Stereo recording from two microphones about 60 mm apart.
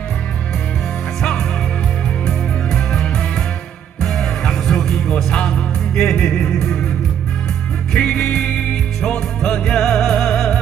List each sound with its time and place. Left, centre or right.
2.2 s music: centre
7.9 s music: centre